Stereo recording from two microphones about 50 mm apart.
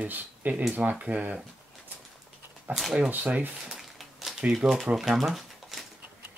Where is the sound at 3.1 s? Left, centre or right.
Right.